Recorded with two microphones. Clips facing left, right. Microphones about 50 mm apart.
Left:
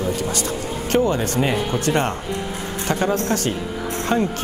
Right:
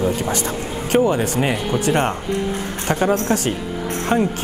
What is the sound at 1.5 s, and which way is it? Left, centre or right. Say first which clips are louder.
Speech: right 1 dB; centre.